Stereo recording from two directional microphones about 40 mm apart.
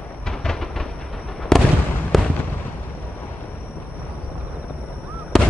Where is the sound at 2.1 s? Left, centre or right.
Centre.